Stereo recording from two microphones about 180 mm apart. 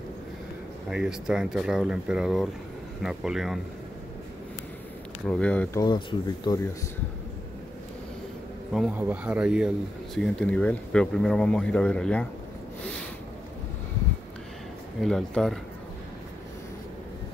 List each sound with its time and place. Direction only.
0.8 s speech: 5° right (ahead or behind)
5.2 s speech: 5° left (ahead or behind)
5.8 s speech: 25° left (ahead or behind)
8.7 s speech: 5° right (ahead or behind)
15.0 s speech: centre (ahead or behind)